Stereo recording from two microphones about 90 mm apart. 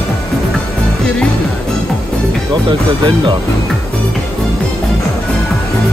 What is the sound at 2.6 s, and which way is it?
Speech, 60° right (ahead or behind).